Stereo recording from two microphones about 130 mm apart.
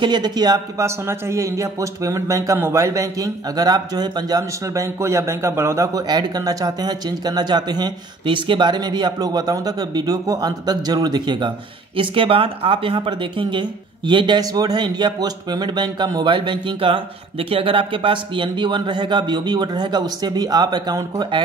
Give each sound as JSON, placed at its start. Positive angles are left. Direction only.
{"t": 0.0, "sound": "a man's voice", "side_deg": -35}